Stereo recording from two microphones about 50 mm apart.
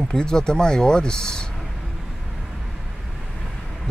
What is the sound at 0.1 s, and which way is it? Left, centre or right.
Speech, centre.